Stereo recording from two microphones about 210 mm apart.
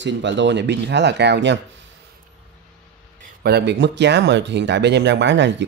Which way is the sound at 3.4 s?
50° right (ahead or behind).